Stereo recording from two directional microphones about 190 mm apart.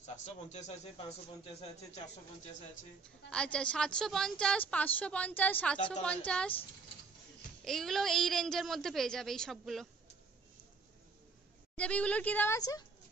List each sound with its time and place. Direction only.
0.0 s a man's voice: 35° left (ahead or behind)
3.3 s a woman's voice: 5° left (ahead or behind)
7.6 s a woman's voice: centre (ahead or behind)
11.7 s speech: 5° left (ahead or behind)